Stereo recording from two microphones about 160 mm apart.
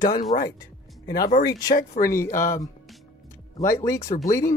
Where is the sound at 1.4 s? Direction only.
25° left (ahead or behind).